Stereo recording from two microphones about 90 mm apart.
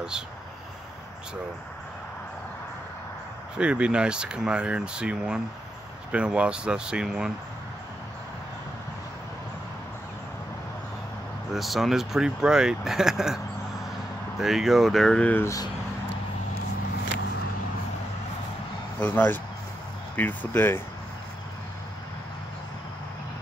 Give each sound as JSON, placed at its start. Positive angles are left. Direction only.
{"t": 3.5, "sound": "speech", "side_deg": -10}
{"t": 11.5, "sound": "speech", "side_deg": 0}
{"t": 14.4, "sound": "speech", "side_deg": 0}
{"t": 18.9, "sound": "speech", "side_deg": 20}